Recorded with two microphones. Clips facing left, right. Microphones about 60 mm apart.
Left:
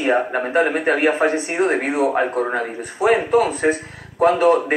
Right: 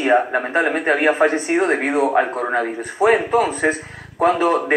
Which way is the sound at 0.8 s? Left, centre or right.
Centre.